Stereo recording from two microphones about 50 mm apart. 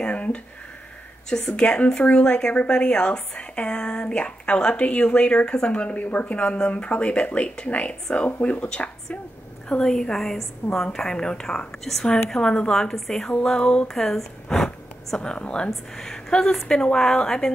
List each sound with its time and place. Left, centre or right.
0.0 s a sound: left
1.3 s a woman's voice: centre
13.2 s a woman's voice: centre
13.8 s speech: centre; by 15.7 s left
15.7 s a woman's voice: centre